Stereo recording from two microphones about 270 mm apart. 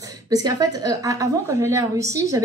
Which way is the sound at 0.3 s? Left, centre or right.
Centre.